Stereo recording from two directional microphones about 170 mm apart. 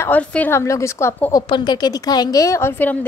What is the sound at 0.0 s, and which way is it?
A woman's voice, 10° left (ahead or behind).